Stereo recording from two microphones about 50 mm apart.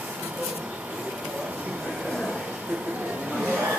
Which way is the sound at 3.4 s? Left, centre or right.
Right.